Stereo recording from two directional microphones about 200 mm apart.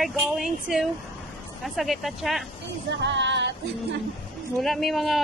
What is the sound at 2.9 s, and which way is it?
Music, 60° right (ahead or behind).